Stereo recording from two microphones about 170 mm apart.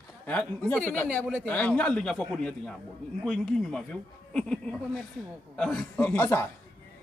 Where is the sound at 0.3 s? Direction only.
10° left (ahead or behind).